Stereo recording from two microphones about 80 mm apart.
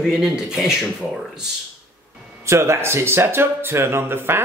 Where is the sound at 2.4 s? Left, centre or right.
Right.